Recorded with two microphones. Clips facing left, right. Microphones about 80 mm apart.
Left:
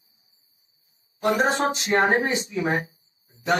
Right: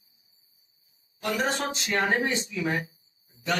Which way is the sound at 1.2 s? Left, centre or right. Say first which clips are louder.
Left 6 dB; left.